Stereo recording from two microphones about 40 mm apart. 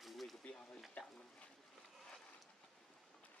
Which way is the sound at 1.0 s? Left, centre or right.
Left.